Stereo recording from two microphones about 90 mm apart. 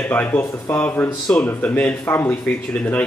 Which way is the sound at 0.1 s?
20° left (ahead or behind).